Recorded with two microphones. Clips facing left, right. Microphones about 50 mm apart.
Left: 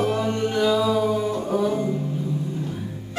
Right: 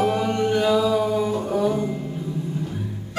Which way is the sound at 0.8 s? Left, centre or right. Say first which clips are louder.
Right 1 dB; centre.